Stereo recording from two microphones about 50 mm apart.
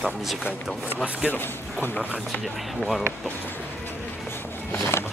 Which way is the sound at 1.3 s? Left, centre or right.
Left.